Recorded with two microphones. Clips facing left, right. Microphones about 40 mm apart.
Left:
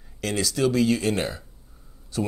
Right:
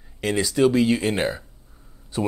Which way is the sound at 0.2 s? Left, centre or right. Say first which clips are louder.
Right 4 dB; centre.